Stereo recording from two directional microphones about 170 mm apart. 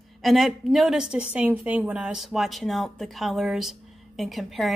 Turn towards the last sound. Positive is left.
turn(degrees=0)  # may be behind; listen again after turning